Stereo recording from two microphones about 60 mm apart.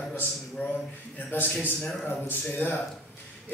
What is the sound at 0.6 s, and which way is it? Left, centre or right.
A man's voice, left.